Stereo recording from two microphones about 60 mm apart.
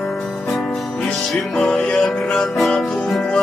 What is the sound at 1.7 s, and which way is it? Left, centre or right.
Music, centre.